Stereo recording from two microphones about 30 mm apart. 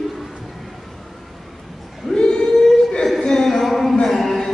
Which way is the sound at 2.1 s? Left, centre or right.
Left.